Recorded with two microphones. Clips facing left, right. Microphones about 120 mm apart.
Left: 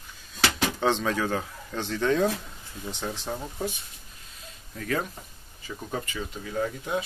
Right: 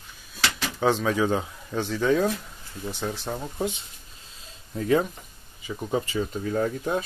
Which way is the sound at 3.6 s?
25° right (ahead or behind).